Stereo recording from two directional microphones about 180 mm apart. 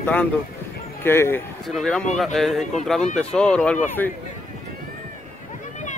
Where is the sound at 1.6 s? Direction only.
Centre (ahead or behind).